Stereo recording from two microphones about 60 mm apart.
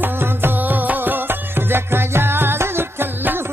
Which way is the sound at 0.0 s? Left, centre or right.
Right.